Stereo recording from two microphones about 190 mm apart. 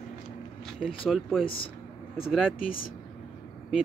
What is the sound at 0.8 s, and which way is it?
Speech, 5° right (ahead or behind).